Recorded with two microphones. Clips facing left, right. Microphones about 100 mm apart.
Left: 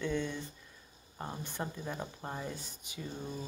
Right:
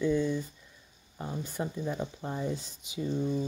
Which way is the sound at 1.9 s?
40° left (ahead or behind).